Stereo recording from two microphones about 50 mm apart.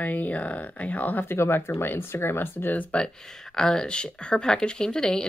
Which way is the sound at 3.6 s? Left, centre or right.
Centre.